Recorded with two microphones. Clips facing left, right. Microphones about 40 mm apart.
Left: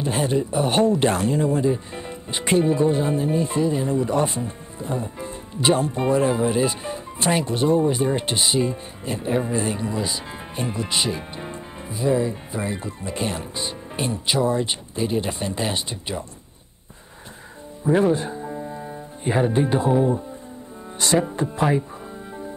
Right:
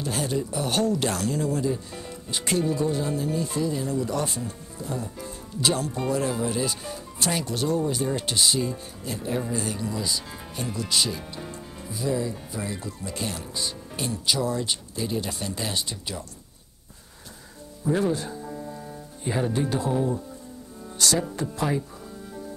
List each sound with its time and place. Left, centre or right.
0.0 s speech: left
17.8 s speech: left